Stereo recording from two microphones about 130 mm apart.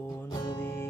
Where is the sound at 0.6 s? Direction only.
20° left (ahead or behind).